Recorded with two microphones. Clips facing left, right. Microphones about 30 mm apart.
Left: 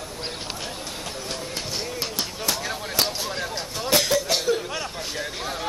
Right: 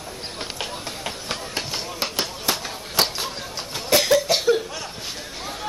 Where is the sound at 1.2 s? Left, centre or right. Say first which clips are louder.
Right 3 dB; right.